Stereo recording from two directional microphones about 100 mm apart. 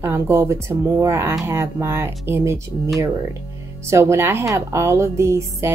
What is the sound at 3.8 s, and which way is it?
Speech, 30° right (ahead or behind).